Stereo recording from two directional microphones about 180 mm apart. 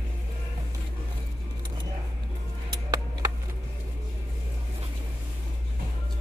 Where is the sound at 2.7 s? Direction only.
20° right (ahead or behind).